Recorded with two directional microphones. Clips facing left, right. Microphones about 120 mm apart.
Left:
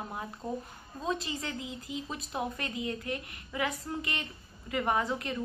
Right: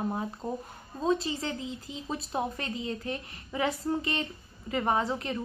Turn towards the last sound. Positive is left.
turn(degrees=-30)  # may be behind; listen again after turning